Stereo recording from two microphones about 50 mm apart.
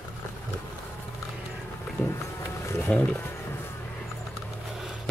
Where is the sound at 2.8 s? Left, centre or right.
Left.